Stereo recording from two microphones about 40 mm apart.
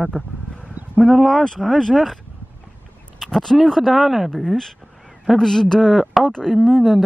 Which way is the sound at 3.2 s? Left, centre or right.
Centre.